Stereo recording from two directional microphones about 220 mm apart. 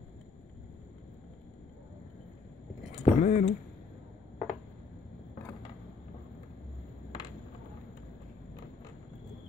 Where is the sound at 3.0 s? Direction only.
30° left (ahead or behind).